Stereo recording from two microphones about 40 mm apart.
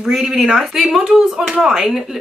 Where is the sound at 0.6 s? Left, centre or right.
Centre.